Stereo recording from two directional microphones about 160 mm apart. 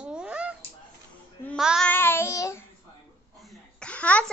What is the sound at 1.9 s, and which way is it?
Child singing, 15° left (ahead or behind).